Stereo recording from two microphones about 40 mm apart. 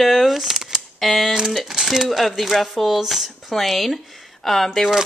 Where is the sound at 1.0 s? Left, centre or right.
Centre.